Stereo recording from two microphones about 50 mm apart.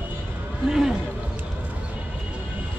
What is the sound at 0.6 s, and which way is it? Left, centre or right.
Speech, centre.